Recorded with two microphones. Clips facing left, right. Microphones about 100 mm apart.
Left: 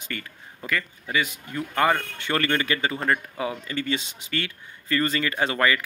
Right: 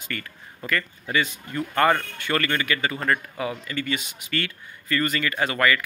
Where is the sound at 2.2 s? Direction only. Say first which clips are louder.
Even; 25° left (ahead or behind).